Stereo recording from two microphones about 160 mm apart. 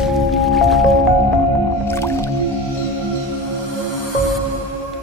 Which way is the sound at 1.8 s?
15° left (ahead or behind).